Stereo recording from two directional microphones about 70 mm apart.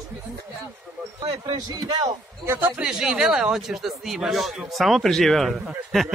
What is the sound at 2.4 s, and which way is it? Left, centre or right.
Speech, right.